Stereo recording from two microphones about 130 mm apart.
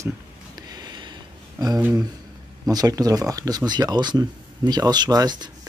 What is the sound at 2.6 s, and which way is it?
Speech, 30° right (ahead or behind).